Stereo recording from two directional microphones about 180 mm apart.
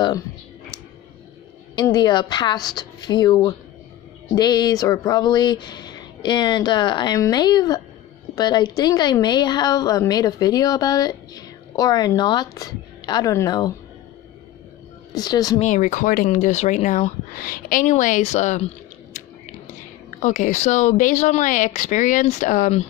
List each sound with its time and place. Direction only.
1.8 s a woman's voice: 25° left (ahead or behind)
15.1 s a woman's voice: 20° left (ahead or behind)
15.6 s speech: 45° left (ahead or behind)
20.1 s speech: 45° left (ahead or behind)